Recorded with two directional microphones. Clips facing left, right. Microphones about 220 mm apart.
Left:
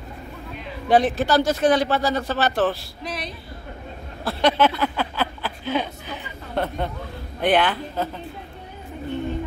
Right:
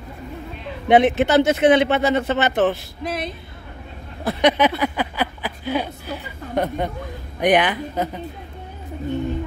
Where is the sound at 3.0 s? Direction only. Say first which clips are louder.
Right 5 dB; 55° right (ahead or behind).